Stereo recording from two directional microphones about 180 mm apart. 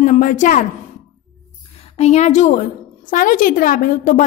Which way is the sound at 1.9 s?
40° left (ahead or behind).